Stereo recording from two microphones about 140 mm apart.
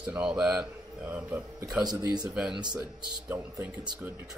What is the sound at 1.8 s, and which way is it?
Speech, 25° right (ahead or behind).